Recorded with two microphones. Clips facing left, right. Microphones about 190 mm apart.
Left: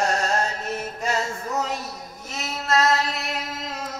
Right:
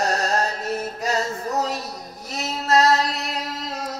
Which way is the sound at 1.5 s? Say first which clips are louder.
Right 1 dB; 35° right (ahead or behind).